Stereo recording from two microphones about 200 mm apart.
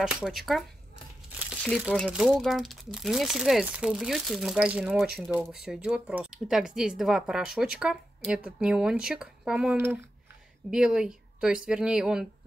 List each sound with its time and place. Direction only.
0.0 s speech: centre (ahead or behind)